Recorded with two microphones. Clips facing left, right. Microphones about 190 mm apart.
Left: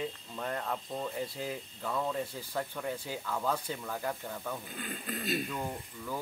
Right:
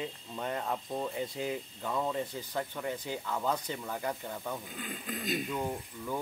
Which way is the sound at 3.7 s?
5° right (ahead or behind).